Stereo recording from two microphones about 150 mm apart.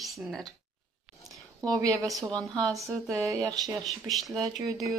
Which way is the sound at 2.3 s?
5° left (ahead or behind).